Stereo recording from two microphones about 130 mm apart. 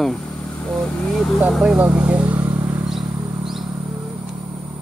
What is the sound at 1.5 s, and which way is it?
Speech, 5° right (ahead or behind).